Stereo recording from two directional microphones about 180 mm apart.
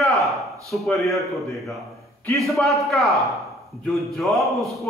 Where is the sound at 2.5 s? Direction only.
Centre (ahead or behind).